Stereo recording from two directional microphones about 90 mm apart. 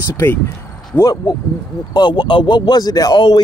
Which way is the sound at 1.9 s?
55° left (ahead or behind).